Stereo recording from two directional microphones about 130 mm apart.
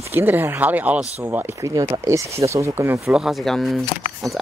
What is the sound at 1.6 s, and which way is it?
Speech, 30° right (ahead or behind).